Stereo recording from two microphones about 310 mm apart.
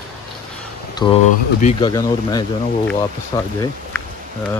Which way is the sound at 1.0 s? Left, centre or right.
Centre.